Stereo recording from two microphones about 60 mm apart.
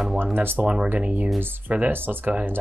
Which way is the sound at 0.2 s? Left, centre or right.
Right.